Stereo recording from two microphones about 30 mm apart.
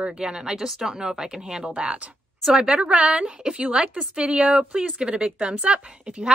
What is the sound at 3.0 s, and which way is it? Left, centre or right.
A woman's voice, right.